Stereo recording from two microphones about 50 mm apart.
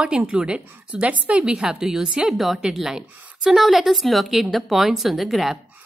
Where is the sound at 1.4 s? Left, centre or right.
Centre.